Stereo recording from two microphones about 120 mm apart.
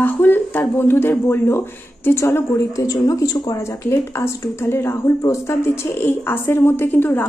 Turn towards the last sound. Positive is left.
turn(degrees=15)  # may be behind; listen again after turning